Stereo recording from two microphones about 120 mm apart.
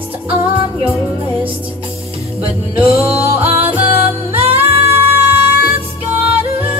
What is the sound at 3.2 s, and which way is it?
Music, 55° right (ahead or behind).